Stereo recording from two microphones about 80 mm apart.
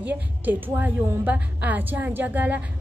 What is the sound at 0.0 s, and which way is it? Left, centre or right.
A woman's voice, right.